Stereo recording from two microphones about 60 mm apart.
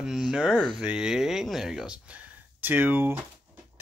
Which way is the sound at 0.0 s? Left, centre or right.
Centre.